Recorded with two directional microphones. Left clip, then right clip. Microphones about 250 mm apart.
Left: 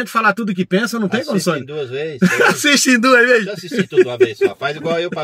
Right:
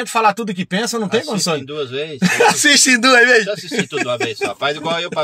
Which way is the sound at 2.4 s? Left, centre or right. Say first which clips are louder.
Right 2 dB; centre.